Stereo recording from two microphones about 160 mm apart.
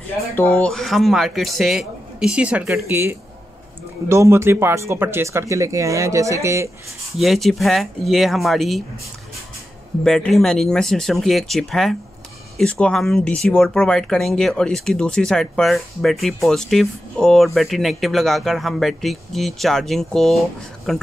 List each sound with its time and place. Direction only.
0.4 s speech: 10° left (ahead or behind); by 6.7 s 15° right (ahead or behind)
7.2 s speech: centre (ahead or behind)
10.0 s speech: centre (ahead or behind)